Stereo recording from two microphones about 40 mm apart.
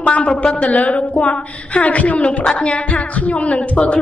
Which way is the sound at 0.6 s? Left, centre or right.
Left.